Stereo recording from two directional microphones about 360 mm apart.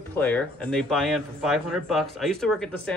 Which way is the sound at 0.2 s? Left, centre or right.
Centre.